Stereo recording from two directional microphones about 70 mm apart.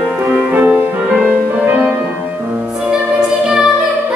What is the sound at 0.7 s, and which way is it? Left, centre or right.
Music, centre.